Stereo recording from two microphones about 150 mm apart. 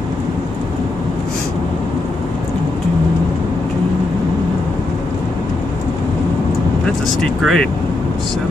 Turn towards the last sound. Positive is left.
turn(degrees=0)  # may be behind; listen again after turning